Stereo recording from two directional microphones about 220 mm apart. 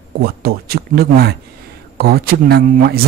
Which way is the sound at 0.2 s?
45° right (ahead or behind).